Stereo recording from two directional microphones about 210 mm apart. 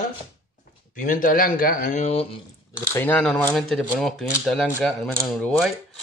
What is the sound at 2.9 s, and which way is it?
A man's voice, 10° left (ahead or behind).